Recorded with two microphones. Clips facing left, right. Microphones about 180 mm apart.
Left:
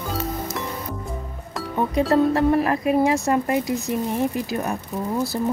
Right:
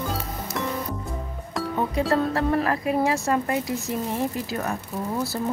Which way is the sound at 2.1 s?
20° left (ahead or behind).